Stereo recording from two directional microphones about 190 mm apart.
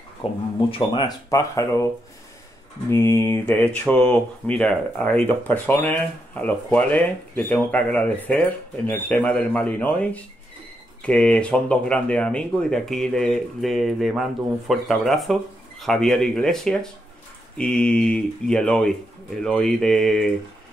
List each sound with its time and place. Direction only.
0.2 s speech: 30° left (ahead or behind)
2.9 s speech: 15° left (ahead or behind)